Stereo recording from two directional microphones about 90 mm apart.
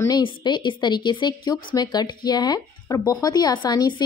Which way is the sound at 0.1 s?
55° left (ahead or behind).